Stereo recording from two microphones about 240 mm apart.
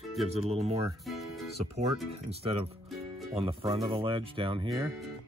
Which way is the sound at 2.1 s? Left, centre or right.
Right.